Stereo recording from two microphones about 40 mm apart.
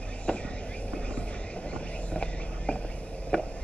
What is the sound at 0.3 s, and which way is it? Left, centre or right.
Vehicle, left.